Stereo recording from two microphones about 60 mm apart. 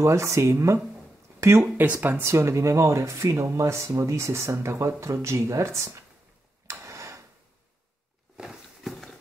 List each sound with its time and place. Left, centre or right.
0.0 s speech: right
1.8 s speech: right
6.7 s tick-tock: right
8.4 s a sound: centre
8.8 s clip-clop: centre